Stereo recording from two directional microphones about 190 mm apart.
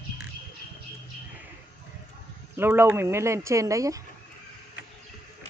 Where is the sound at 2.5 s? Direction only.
10° right (ahead or behind).